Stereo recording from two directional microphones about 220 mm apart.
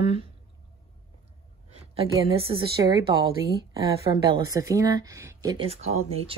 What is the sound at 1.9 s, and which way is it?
A woman's voice, 25° right (ahead or behind).